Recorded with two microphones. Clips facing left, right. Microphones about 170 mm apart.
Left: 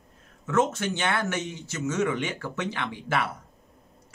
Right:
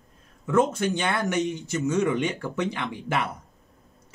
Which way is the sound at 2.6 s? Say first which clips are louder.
Right 3 dB; 15° right (ahead or behind).